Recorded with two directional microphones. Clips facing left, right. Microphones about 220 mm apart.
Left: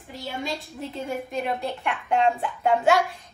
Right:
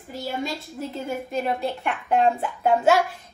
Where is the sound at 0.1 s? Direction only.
Centre (ahead or behind).